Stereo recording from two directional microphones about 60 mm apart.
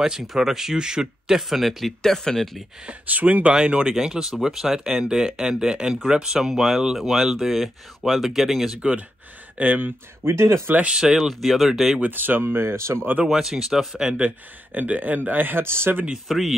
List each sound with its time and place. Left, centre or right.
0.0 s speech: centre
2.9 s speech: right; by 8.7 s centre
8.7 s speech: centre
9.6 s speech: right
10.2 s speech: right
10.9 s speech: centre
11.1 s speech: centre
12.0 s speech: right
13.2 s speech: centre
14.7 s speech: right
16.3 s speech: centre